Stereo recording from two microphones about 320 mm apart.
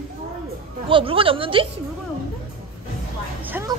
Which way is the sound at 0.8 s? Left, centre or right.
Centre.